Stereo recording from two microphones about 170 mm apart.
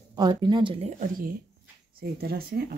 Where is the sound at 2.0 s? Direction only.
65° right (ahead or behind).